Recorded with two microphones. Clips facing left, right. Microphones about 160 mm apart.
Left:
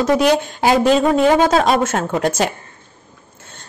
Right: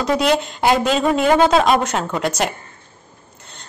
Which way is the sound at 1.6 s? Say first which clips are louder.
Left 1 dB; 45° left (ahead or behind).